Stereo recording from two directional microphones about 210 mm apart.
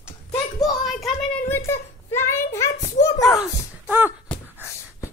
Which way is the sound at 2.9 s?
20° left (ahead or behind).